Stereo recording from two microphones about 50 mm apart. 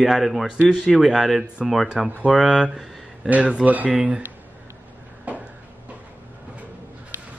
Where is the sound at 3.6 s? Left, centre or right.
Right.